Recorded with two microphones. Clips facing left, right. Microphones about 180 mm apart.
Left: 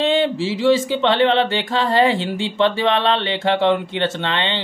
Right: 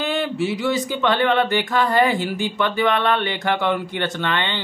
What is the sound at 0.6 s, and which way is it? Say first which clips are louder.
Speech: left 6 dB; 25° left (ahead or behind).